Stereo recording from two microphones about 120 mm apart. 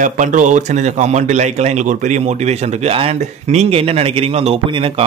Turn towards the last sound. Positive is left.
turn(degrees=-60)  # may be behind; listen again after turning